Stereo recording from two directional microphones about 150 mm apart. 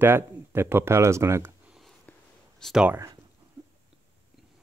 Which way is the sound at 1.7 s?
Centre (ahead or behind).